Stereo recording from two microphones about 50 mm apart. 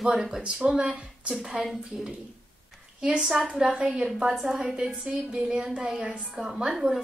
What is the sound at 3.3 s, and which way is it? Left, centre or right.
A woman's voice, centre.